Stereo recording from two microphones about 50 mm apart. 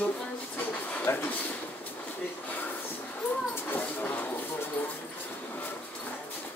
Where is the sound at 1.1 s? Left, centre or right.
Left.